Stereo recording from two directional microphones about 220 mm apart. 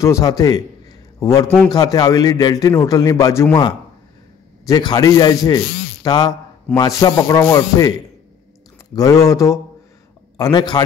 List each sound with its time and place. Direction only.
0.0 s a man's voice: 15° left (ahead or behind)
8.9 s a man's voice: 15° left (ahead or behind)